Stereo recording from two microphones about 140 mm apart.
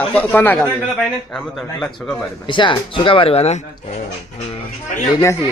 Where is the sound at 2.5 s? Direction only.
35° left (ahead or behind).